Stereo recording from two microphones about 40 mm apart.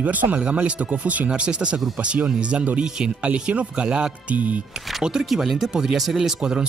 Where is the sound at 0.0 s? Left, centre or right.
Right.